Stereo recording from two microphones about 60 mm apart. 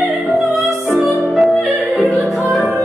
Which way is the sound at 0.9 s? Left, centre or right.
Centre.